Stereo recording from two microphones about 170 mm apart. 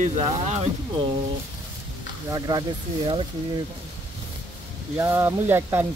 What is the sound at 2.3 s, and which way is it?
Speech, 20° right (ahead or behind).